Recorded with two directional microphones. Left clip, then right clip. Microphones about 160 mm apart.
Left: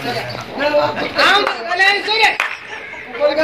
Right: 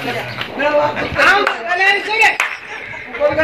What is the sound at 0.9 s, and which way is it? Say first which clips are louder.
Speech: right 1 dB; centre (ahead or behind).